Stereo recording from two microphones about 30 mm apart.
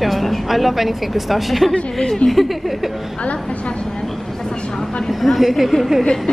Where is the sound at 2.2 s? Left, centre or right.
Left.